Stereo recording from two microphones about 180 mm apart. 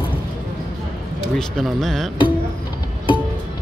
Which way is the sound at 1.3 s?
Centre (ahead or behind).